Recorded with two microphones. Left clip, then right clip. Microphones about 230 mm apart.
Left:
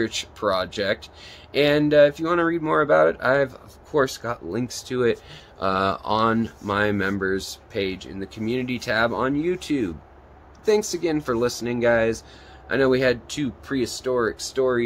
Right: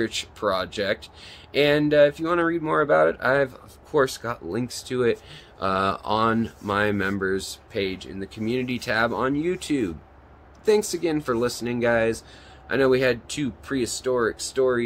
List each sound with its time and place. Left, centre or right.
0.0 s speech: centre